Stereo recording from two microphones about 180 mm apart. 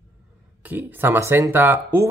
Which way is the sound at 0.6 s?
10° right (ahead or behind).